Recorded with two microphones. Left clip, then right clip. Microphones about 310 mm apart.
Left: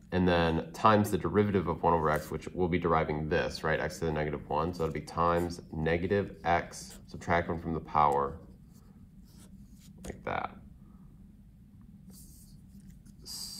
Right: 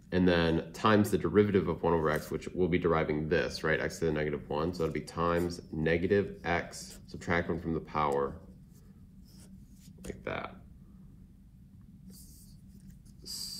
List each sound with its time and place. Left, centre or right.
0.2 s speech: left
10.2 s speech: left
13.2 s a sound: left